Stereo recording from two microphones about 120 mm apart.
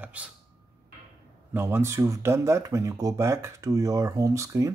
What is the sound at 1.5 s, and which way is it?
Speech, 20° right (ahead or behind).